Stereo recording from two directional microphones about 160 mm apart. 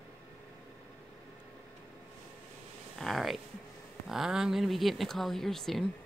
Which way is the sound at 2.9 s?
Centre (ahead or behind).